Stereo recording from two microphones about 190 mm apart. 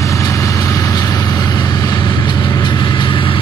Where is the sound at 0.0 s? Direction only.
15° left (ahead or behind).